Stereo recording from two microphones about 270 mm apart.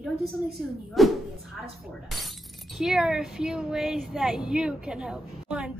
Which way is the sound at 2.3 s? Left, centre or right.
Centre.